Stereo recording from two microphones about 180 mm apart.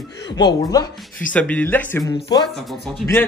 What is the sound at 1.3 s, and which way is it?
Speech, 5° left (ahead or behind).